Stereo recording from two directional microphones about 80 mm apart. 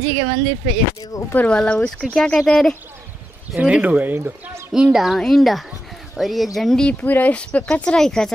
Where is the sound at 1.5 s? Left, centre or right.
Centre.